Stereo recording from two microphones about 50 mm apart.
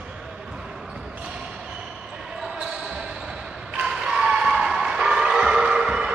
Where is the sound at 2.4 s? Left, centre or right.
Centre.